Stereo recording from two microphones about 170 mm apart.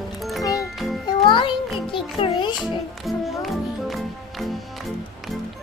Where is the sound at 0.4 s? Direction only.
20° left (ahead or behind).